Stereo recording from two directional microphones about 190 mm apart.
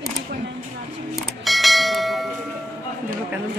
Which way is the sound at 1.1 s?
Centre (ahead or behind).